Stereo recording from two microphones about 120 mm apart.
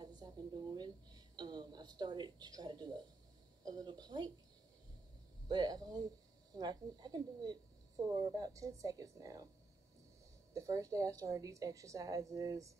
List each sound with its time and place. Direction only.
0.0 s a woman's voice: 35° right (ahead or behind)
5.5 s a woman's voice: 35° right (ahead or behind)
10.5 s a woman's voice: 25° right (ahead or behind)